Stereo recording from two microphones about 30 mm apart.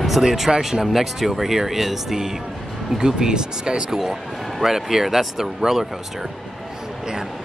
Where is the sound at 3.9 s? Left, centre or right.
Centre.